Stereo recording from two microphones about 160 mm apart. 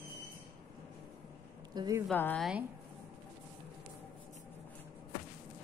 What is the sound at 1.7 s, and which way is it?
Speech, 25° right (ahead or behind).